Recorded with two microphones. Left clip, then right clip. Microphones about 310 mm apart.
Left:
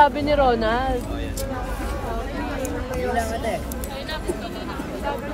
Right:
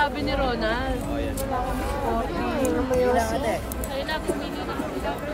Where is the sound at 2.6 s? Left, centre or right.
Centre.